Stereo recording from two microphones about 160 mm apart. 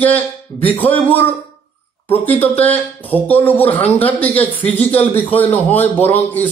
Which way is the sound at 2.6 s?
10° left (ahead or behind).